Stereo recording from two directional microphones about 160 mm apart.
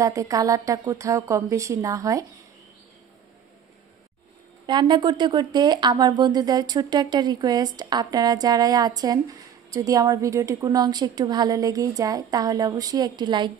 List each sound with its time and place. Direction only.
0.0 s speech: 20° right (ahead or behind)
4.6 s speech: 30° right (ahead or behind)